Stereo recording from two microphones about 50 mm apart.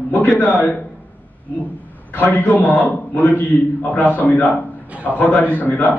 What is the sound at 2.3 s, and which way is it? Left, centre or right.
A man's voice, left.